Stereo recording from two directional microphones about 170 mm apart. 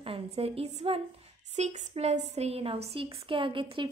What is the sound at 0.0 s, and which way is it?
A woman's voice, 35° right (ahead or behind).